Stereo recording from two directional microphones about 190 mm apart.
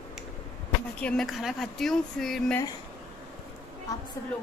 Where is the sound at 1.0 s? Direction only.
5° left (ahead or behind).